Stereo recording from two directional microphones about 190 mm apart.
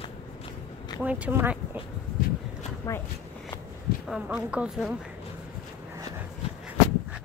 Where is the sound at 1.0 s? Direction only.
5° right (ahead or behind).